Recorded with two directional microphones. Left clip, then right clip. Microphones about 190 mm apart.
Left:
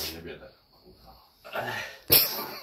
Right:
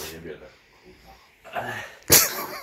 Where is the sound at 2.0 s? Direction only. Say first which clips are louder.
Right 6 dB; 35° right (ahead or behind).